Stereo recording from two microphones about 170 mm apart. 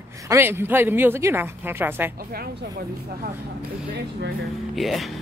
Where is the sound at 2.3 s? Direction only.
65° right (ahead or behind).